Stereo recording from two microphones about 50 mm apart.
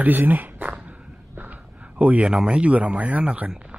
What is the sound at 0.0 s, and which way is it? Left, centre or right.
Speech, right.